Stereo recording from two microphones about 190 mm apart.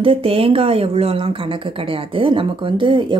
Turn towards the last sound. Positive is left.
turn(degrees=-25)  # may be behind; listen again after turning